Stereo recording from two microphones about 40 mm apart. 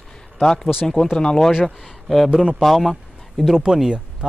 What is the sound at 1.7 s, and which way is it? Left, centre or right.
Speech, centre.